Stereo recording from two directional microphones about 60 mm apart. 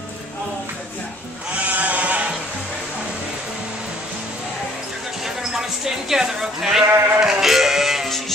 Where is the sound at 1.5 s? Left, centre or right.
Right.